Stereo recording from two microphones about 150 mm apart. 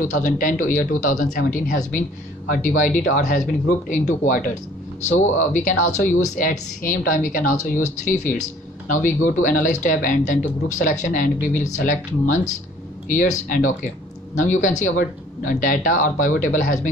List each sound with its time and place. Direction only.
0.0 s a woman's voice: 60° left (ahead or behind)
6.3 s a woman's voice: 65° left (ahead or behind)